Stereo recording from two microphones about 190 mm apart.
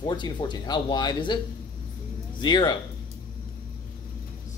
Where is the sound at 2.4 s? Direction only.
20° left (ahead or behind).